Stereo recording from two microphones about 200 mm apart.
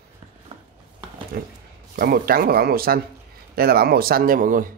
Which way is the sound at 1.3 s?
50° right (ahead or behind).